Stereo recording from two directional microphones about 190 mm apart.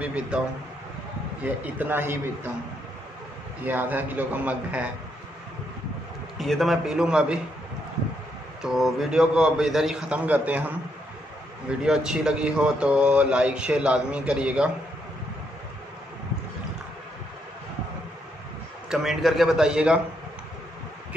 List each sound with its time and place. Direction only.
0.0 s a man's voice: 5° right (ahead or behind)
1.4 s a man's voice: 10° right (ahead or behind)
3.6 s a man's voice: 10° right (ahead or behind)
6.3 s speech: centre (ahead or behind)
8.6 s speech: centre (ahead or behind)
11.8 s speech: 5° right (ahead or behind)
18.9 s speech: centre (ahead or behind)